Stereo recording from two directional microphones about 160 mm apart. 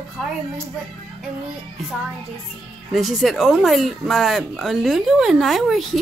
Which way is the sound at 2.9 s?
Centre (ahead or behind).